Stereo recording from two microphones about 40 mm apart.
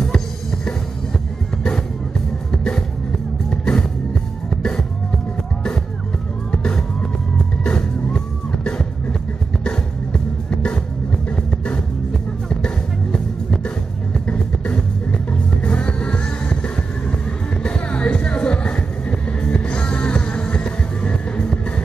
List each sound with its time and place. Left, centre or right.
2.5 s music: centre
6.5 s music: left
12.4 s music: centre
17.6 s music: left